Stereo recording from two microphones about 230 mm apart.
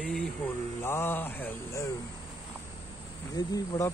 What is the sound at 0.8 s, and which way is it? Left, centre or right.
Speech, centre.